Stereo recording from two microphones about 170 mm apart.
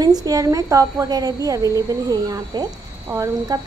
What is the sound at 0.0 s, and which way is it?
A woman's voice, 20° right (ahead or behind).